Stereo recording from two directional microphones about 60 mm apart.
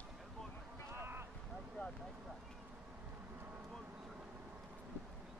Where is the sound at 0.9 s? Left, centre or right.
Right.